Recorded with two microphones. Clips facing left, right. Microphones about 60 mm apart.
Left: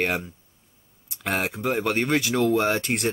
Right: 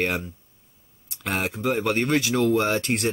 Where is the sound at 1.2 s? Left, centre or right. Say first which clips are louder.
Even; centre.